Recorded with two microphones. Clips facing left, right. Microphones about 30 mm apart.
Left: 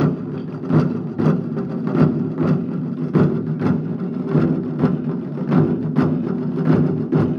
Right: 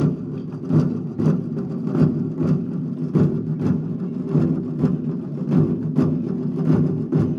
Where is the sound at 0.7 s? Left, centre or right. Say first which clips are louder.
Left 2 dB; left.